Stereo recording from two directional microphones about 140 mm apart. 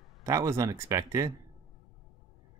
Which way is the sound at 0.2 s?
20° right (ahead or behind).